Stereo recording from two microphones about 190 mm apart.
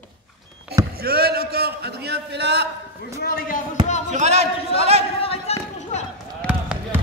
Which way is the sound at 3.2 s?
50° left (ahead or behind).